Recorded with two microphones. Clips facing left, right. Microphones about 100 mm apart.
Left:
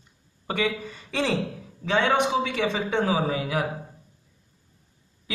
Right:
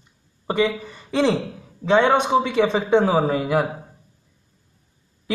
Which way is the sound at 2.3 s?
35° right (ahead or behind).